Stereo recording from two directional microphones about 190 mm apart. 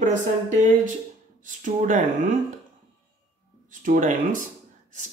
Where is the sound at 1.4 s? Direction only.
40° right (ahead or behind).